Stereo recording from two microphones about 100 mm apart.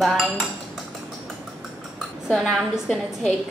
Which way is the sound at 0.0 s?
Centre (ahead or behind).